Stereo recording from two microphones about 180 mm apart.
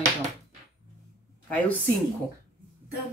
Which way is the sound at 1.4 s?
10° left (ahead or behind).